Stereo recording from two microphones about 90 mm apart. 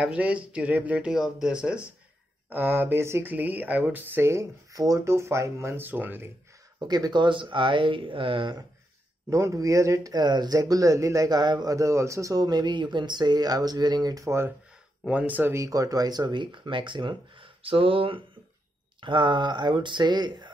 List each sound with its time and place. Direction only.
0.0 s speech: 15° right (ahead or behind)
1.1 s speech: 5° right (ahead or behind); by 6.3 s 20° right (ahead or behind)
6.8 s speech: 50° right (ahead or behind); by 8.5 s 70° right (ahead or behind)
9.3 s a man's voice: 35° right (ahead or behind)
10.1 s speech: 50° right (ahead or behind)
11.7 s speech: 35° right (ahead or behind)
15.0 s speech: 15° right (ahead or behind)
15.5 s speech: 40° right (ahead or behind); by 18.2 s 75° right (ahead or behind)
18.9 s speech: 65° right (ahead or behind)